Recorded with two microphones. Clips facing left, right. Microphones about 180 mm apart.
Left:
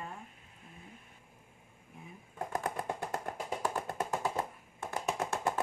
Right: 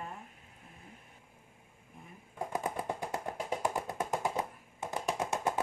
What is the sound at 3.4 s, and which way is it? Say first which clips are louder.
Music: right 3 dB; 15° right (ahead or behind).